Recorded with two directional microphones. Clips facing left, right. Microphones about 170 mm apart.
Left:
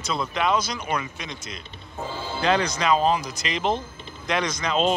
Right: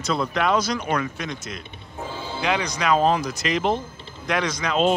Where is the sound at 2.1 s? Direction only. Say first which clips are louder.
Left 2 dB; 15° right (ahead or behind).